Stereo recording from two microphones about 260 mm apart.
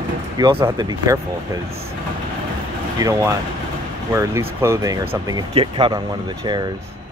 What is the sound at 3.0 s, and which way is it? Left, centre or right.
Speech, centre.